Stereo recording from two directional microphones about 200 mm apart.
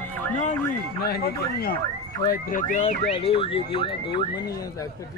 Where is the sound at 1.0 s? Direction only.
50° left (ahead or behind); by 4.9 s 20° left (ahead or behind).